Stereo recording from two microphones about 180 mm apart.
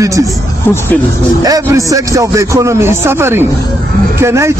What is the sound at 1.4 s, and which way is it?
A man's voice, 20° right (ahead or behind).